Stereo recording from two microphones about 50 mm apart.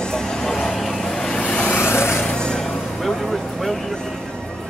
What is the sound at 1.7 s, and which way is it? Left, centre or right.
Vehicle, left.